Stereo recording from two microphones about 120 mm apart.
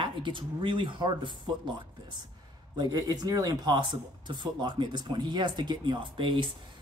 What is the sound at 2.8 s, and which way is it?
Speech, 35° right (ahead or behind).